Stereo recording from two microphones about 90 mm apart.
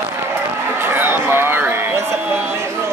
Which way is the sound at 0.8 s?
25° right (ahead or behind).